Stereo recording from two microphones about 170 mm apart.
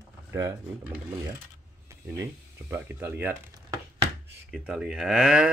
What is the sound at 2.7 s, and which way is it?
Speech, 10° right (ahead or behind).